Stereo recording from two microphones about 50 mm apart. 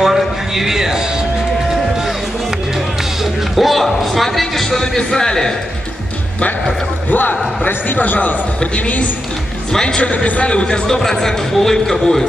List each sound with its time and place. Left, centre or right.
0.0 s a man's voice: centre
3.5 s a man's voice: centre
7.1 s a man's voice: left
9.7 s a man's voice: centre
10.9 s speech: centre